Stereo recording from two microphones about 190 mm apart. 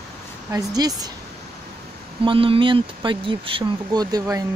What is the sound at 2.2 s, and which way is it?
Speech, 30° right (ahead or behind).